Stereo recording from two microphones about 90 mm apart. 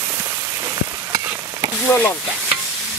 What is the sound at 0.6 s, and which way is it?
Frying, 50° right (ahead or behind).